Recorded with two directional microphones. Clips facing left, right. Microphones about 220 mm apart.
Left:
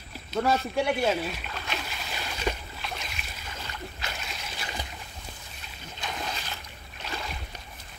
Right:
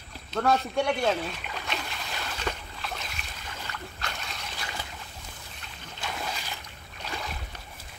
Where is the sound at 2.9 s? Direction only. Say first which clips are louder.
Even; centre (ahead or behind).